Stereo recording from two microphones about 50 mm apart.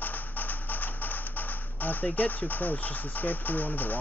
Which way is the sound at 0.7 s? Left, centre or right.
Left.